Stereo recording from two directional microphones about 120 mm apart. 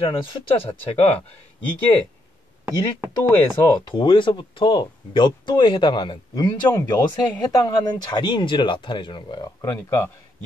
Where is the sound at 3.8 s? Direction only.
40° left (ahead or behind); by 10.1 s 25° left (ahead or behind).